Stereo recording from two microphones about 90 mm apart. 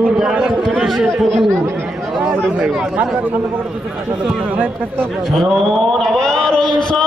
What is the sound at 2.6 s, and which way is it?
Speech, 10° right (ahead or behind).